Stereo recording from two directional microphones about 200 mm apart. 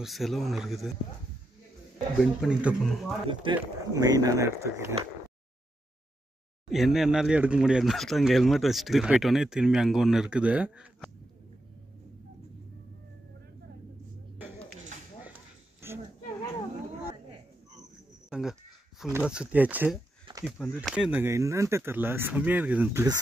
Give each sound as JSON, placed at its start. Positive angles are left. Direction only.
{"t": 0.0, "sound": "speech", "side_deg": 0}
{"t": 2.1, "sound": "speech", "side_deg": 0}
{"t": 3.3, "sound": "speech", "side_deg": -20}
{"t": 6.7, "sound": "speech", "side_deg": 0}
{"t": 15.8, "sound": "a sound", "side_deg": -10}
{"t": 18.3, "sound": "speech", "side_deg": 0}